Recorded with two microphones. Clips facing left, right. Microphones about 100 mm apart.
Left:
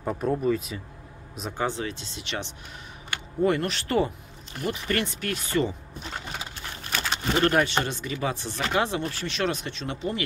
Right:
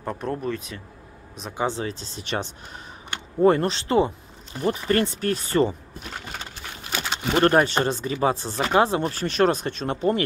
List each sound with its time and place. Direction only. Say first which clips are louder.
0.0 s speech: left 3 dB; 5° left (ahead or behind)
1.7 s speech: right 2 dB; 35° right (ahead or behind)
4.6 s speech: right 6 dB; 35° right (ahead or behind)
7.3 s speech: right 5 dB; 40° right (ahead or behind)